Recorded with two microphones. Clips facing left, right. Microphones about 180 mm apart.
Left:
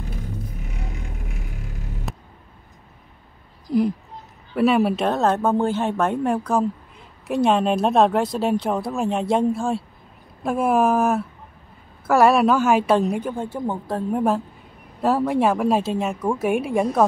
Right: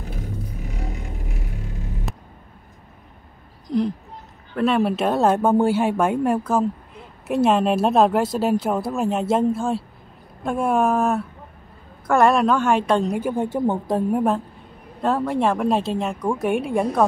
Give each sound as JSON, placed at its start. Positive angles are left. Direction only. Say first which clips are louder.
{"t": 3.6, "sound": "a sound", "louder": "left 2 dB", "side_deg": 5}
{"t": 4.6, "sound": "speech", "louder": "left 1 dB", "side_deg": 5}
{"t": 13.3, "sound": "speech", "louder": "right 5 dB", "side_deg": -20}
{"t": 14.1, "sound": "speech", "louder": "even", "side_deg": 0}